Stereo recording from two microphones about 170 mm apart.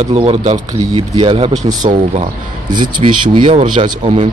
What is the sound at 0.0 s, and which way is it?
A man's voice, 35° right (ahead or behind).